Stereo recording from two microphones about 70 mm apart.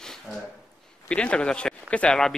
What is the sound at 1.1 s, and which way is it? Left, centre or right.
Speech, centre.